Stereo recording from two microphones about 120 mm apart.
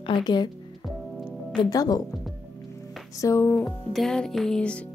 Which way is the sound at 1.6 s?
30° left (ahead or behind).